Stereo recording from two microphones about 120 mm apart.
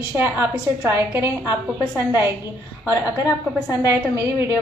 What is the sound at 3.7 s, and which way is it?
Speech, 20° right (ahead or behind).